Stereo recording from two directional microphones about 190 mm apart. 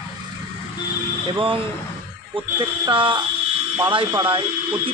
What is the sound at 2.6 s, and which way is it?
A man's voice, 25° right (ahead or behind).